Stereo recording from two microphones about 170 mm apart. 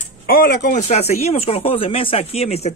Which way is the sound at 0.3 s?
60° left (ahead or behind).